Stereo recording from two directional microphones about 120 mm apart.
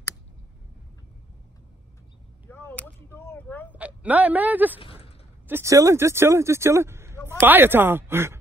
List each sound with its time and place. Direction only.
2.5 s speech: 15° left (ahead or behind)
3.7 s speech: 10° right (ahead or behind)
4.7 s a sound: 50° left (ahead or behind)
5.5 s speech: 25° right (ahead or behind)